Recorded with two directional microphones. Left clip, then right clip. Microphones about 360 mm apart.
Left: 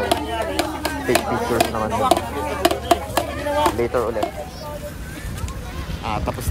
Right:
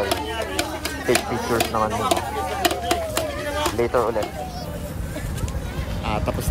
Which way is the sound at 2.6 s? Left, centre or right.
Left.